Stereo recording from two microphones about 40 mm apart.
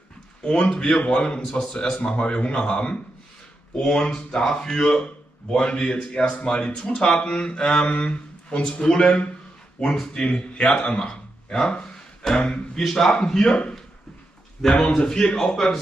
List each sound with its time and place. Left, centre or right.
0.4 s speech: left
0.7 s speech: centre
2.0 s speech: left
7.8 s a man's voice: left
11.7 s a sound: centre
12.7 s speech: centre
14.6 s speech: centre